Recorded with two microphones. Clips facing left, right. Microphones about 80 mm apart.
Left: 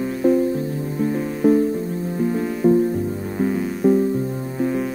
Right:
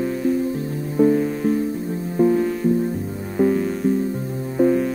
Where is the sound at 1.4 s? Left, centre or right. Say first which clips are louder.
Left 8 dB; centre.